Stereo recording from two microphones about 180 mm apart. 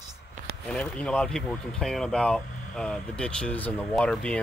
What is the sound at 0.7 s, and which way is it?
Speech, 5° left (ahead or behind).